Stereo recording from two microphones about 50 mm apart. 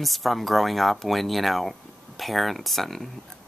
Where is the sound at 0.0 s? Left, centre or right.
Centre.